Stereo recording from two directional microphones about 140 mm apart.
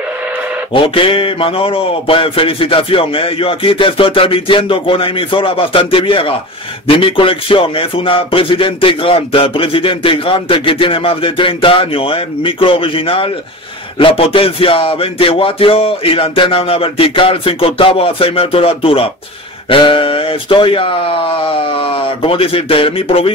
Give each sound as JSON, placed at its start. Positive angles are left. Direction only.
{"t": 0.7, "sound": "speech", "side_deg": 40}